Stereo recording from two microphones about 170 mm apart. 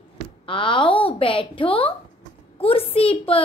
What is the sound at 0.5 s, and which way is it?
A woman's voice, 30° left (ahead or behind).